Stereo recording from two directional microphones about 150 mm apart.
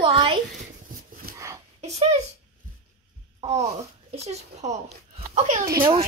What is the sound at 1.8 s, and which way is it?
Speech, 45° right (ahead or behind).